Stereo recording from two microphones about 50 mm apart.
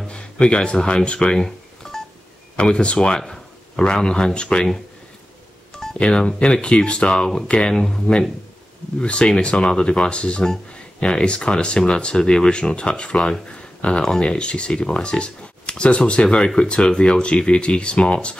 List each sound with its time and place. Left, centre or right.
0.0 s a sound: left
2.5 s speech: left
5.9 s speech: centre
7.7 s speech: centre
9.0 s speech: left